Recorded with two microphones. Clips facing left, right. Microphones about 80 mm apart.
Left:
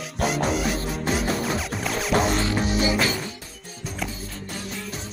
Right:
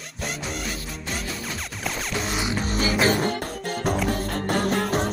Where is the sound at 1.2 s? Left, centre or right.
Left.